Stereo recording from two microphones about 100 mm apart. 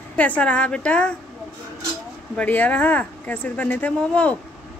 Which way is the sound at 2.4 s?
15° left (ahead or behind).